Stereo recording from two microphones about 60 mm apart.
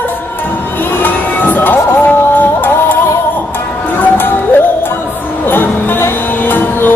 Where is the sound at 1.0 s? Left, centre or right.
Left.